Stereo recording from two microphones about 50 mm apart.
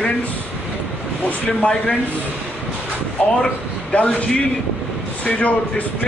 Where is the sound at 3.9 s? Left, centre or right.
Left.